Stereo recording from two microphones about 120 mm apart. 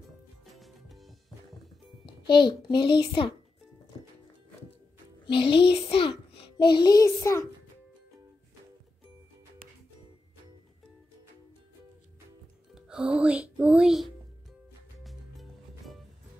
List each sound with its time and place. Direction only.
0.6 s music: centre (ahead or behind)
2.2 s a child's voice: 40° left (ahead or behind)
5.2 s a child's voice: 45° left (ahead or behind); by 7.4 s 25° left (ahead or behind)
12.7 s speech: 5° right (ahead or behind)
15.0 s music: centre (ahead or behind)